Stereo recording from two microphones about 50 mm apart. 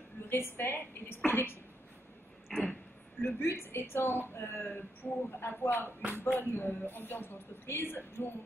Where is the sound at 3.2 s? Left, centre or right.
Left.